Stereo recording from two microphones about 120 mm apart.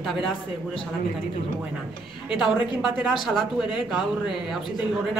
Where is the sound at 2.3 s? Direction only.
5° right (ahead or behind).